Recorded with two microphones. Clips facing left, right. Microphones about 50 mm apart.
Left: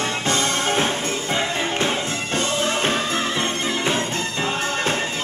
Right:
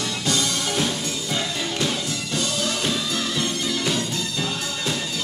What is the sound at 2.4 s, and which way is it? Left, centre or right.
Music, left.